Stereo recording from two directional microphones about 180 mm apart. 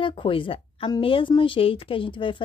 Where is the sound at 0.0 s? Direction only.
30° left (ahead or behind).